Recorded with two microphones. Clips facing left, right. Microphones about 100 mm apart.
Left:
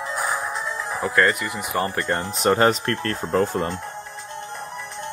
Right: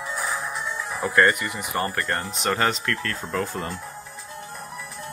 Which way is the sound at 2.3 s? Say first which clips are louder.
Left 7 dB; 35° left (ahead or behind).